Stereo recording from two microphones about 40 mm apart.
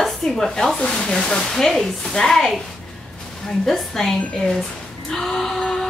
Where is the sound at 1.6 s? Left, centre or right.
Centre.